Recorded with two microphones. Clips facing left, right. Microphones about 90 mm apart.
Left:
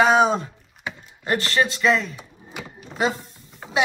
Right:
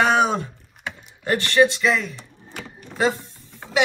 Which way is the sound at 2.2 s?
10° left (ahead or behind).